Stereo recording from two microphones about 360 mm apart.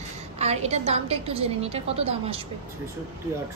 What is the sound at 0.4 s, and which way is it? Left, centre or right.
A woman's voice, centre.